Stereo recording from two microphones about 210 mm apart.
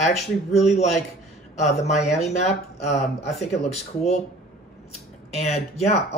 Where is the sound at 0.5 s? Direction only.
30° left (ahead or behind).